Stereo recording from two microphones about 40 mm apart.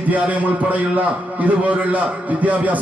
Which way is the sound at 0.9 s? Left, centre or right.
Right.